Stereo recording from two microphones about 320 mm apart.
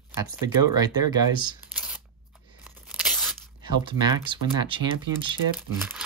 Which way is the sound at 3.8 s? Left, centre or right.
Centre.